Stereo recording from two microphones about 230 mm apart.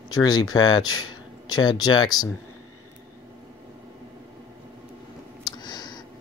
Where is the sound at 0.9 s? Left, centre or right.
Left.